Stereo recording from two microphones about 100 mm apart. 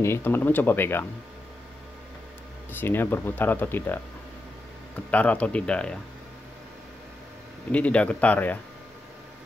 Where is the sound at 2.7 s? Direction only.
20° left (ahead or behind).